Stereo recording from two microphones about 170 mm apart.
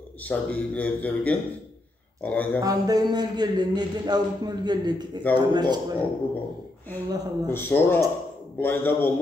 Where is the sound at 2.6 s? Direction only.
20° right (ahead or behind).